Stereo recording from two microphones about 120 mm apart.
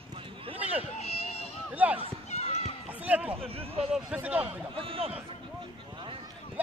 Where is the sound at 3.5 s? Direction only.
55° right (ahead or behind).